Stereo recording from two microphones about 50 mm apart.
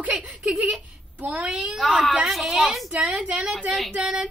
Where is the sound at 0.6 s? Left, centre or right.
Right.